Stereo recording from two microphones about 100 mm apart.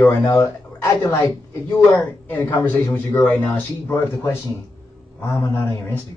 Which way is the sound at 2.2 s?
20° left (ahead or behind).